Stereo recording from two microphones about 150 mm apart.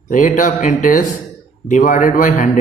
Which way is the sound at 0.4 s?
60° left (ahead or behind).